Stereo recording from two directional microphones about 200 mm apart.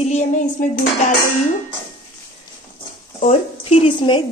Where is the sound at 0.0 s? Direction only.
35° left (ahead or behind).